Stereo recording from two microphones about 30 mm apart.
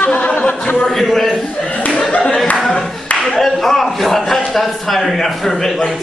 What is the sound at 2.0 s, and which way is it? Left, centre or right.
Clapping, left.